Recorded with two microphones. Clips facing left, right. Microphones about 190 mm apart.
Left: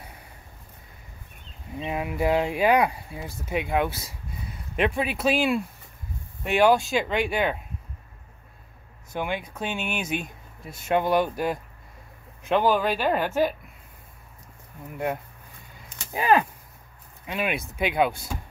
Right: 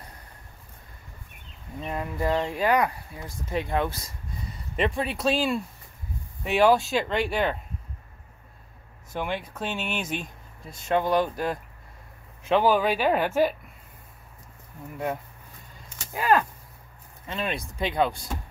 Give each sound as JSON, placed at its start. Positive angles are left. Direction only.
{"t": 1.8, "sound": "speech", "side_deg": 10}
{"t": 9.1, "sound": "speech", "side_deg": 0}
{"t": 16.1, "sound": "speech", "side_deg": 15}